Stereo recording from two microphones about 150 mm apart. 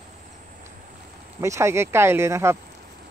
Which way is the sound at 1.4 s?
20° right (ahead or behind).